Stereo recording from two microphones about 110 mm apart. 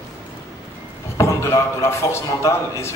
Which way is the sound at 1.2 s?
25° left (ahead or behind).